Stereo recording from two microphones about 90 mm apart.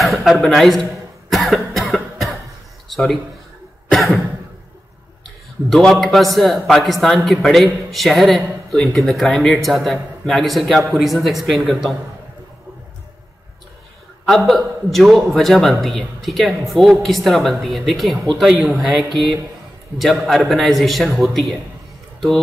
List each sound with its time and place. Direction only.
0.0 s a man's voice: centre (ahead or behind)
1.3 s cough: centre (ahead or behind)
2.9 s a sound: centre (ahead or behind)
3.9 s cough: centre (ahead or behind)
5.7 s speech: centre (ahead or behind)
14.2 s speech: centre (ahead or behind)
18.7 s speech: 15° right (ahead or behind)
20.0 s speech: centre (ahead or behind)